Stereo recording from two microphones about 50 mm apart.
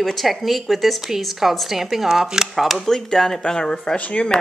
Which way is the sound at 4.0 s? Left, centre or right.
Left.